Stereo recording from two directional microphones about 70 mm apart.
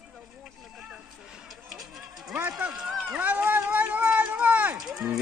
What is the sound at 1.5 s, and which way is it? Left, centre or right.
Music, centre.